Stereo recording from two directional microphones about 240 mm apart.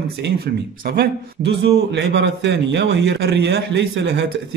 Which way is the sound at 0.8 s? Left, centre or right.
Right.